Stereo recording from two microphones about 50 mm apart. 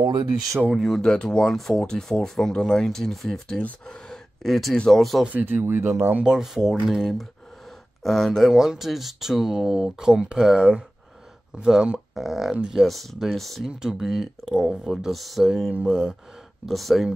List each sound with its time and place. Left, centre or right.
0.7 s speech: centre
1.0 s speech: centre
3.8 s gasp: centre
4.8 s speech: centre
5.3 s speech: right
5.8 s speech: right
6.2 s speech: centre
8.5 s speech: centre
13.7 s speech: centre
16.6 s speech: centre